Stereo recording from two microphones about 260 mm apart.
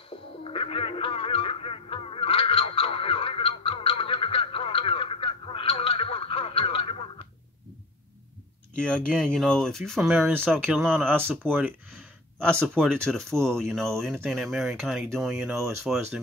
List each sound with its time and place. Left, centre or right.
0.4 s music: left
8.7 s speech: centre